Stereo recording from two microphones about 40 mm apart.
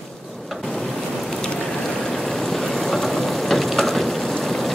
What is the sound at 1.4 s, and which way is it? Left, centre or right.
Vehicle, centre.